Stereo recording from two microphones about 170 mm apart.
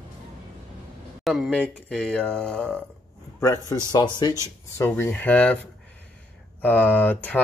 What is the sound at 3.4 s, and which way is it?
Speech, 20° left (ahead or behind).